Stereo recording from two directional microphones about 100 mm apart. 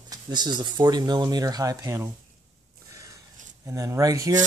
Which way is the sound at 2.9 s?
35° right (ahead or behind).